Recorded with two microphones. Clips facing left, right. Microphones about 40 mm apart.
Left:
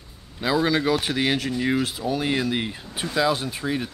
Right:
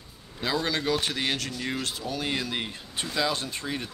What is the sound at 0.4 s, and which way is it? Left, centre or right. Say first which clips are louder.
Speech: left 6 dB; centre.